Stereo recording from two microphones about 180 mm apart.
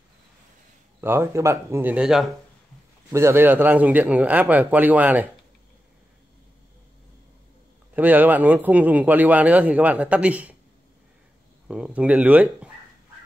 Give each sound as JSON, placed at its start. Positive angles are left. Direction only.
{"t": 1.0, "sound": "speech", "side_deg": -15}
{"t": 3.1, "sound": "speech", "side_deg": -15}
{"t": 7.9, "sound": "speech", "side_deg": -10}
{"t": 11.6, "sound": "speech", "side_deg": -5}